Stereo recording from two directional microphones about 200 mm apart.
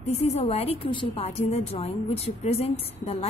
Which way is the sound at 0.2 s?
30° left (ahead or behind).